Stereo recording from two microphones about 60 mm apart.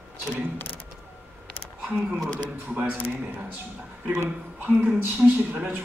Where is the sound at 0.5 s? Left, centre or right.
Left.